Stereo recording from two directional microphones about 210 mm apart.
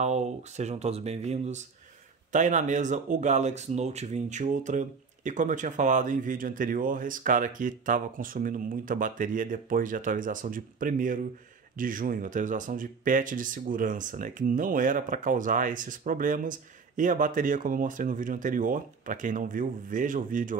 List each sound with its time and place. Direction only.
0.0 s speech: 35° right (ahead or behind)